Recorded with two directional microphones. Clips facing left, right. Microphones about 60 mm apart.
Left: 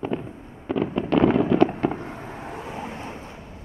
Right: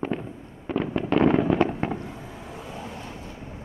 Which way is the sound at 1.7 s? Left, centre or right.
Left.